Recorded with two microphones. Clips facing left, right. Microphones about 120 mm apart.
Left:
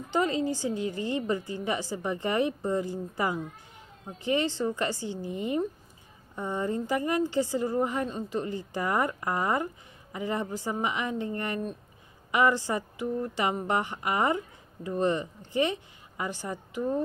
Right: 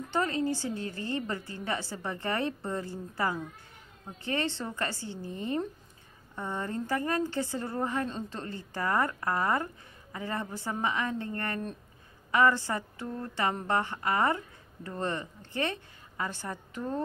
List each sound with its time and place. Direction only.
0.1 s speech: 15° left (ahead or behind)